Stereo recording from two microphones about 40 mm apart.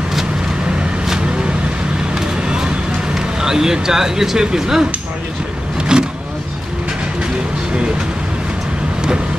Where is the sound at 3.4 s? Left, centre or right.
Centre.